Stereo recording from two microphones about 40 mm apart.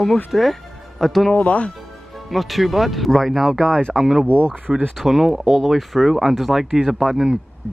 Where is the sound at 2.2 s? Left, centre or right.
Centre.